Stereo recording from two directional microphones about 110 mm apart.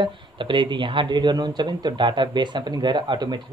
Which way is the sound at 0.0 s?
45° right (ahead or behind).